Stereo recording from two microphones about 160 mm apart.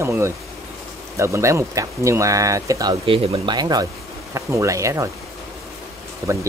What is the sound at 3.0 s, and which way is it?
Speech, 35° right (ahead or behind).